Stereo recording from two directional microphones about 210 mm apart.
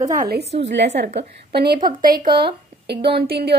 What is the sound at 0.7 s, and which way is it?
A woman's voice, 55° right (ahead or behind).